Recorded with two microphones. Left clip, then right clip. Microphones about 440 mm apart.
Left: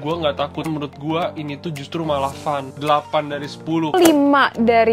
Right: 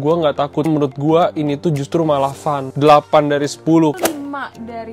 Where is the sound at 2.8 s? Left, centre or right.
Right.